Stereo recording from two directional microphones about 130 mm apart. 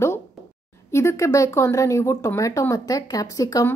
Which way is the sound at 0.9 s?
20° left (ahead or behind).